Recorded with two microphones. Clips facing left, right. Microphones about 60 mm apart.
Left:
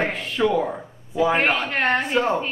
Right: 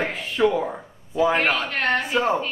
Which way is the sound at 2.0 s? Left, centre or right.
Centre.